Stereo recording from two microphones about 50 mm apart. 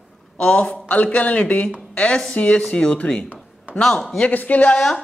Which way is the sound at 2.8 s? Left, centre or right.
Centre.